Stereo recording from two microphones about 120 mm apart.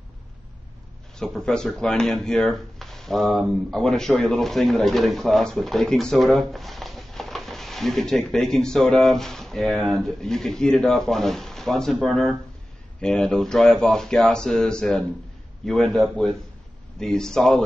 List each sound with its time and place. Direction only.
1.2 s speech: 5° left (ahead or behind)